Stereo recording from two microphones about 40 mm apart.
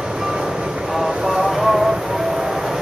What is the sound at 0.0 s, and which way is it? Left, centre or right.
Vehicle, centre.